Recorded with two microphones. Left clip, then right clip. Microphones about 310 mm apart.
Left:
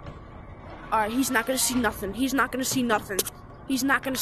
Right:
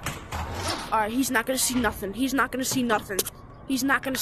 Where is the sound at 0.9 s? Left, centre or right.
Centre.